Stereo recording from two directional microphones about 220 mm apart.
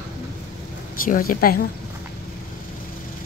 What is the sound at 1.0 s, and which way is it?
Speech, 40° left (ahead or behind).